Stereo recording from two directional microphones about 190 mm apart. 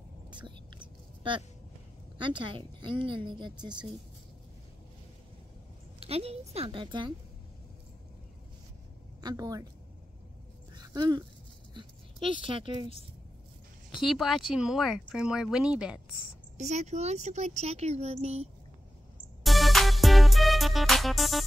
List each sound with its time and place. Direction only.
0.3 s whispering: 25° right (ahead or behind)
2.1 s a woman's voice: 25° right (ahead or behind)
5.9 s speech: 30° right (ahead or behind)
9.2 s a woman's voice: 20° right (ahead or behind)
10.7 s dog: 20° right (ahead or behind)
11.7 s speech: 25° right (ahead or behind)
13.9 s speech: centre (ahead or behind)
16.5 s speech: 35° right (ahead or behind)
19.4 s music: centre (ahead or behind)